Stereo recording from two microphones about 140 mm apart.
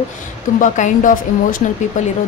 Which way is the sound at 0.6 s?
65° left (ahead or behind).